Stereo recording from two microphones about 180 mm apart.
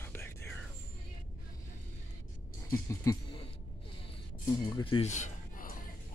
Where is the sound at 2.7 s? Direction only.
15° left (ahead or behind).